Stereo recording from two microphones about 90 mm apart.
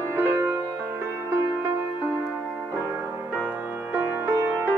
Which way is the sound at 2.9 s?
25° right (ahead or behind).